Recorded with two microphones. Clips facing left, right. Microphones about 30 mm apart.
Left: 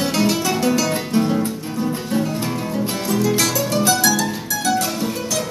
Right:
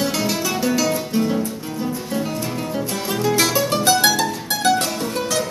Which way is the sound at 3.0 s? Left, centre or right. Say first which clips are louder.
Even; right.